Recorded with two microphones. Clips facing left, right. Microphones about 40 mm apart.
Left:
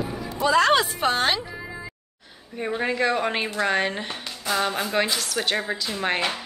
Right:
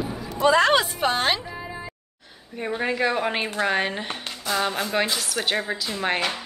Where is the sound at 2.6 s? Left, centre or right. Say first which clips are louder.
Even; centre.